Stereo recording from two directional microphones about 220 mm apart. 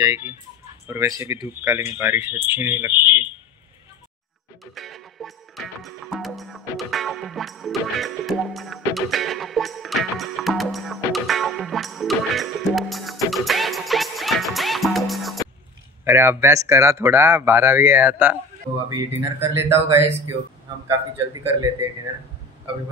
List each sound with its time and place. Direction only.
0.0 s speech: 10° right (ahead or behind)
4.7 s music: centre (ahead or behind)
16.0 s speech: 10° right (ahead or behind)
21.3 s speech: 15° right (ahead or behind)